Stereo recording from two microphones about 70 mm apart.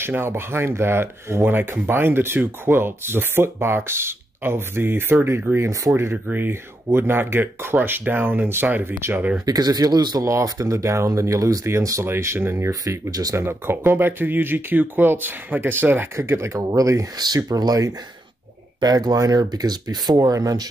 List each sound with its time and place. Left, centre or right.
0.0 s speech: right
9.5 s speech: right
10.4 s speech: right
12.8 s speech: right
13.4 s speech: right
16.2 s speech: right
17.5 s speech: right